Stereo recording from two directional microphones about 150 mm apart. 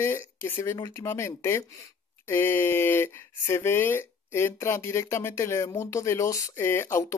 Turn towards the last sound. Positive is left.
turn(degrees=15)  # may be behind; listen again after turning